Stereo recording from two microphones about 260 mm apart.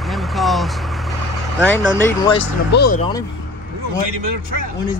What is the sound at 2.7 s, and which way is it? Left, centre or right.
Speech, left.